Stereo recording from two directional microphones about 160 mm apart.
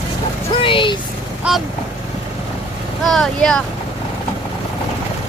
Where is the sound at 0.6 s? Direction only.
30° left (ahead or behind).